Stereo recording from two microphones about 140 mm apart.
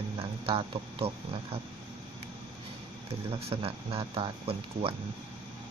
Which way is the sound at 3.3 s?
45° right (ahead or behind).